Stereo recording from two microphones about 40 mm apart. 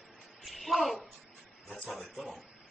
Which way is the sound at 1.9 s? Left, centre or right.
Centre.